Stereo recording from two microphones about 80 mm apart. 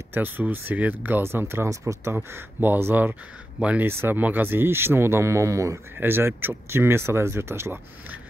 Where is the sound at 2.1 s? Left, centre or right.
Right.